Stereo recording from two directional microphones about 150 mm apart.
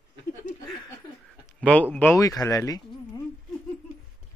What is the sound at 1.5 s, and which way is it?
Speech, 10° left (ahead or behind).